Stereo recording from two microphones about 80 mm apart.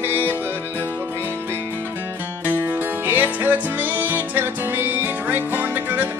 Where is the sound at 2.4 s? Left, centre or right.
Right.